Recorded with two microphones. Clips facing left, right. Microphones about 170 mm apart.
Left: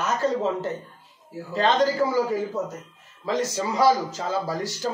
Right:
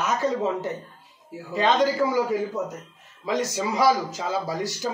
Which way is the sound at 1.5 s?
15° right (ahead or behind).